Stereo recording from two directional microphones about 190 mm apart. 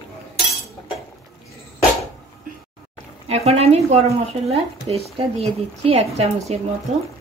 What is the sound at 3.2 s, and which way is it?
Speech, 35° right (ahead or behind).